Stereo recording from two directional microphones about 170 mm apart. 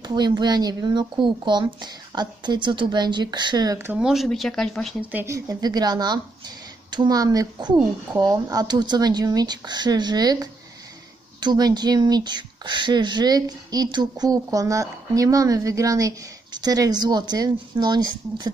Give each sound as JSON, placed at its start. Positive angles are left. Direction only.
{"t": 0.0, "sound": "speech", "side_deg": -25}
{"t": 4.0, "sound": "speech", "side_deg": 0}
{"t": 5.1, "sound": "speech", "side_deg": -15}